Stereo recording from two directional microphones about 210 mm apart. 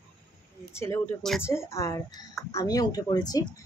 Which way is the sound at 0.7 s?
10° left (ahead or behind).